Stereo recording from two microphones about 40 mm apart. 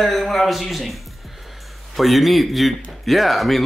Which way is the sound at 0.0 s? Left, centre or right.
Centre.